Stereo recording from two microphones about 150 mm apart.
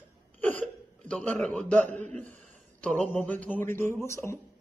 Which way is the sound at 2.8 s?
5° left (ahead or behind).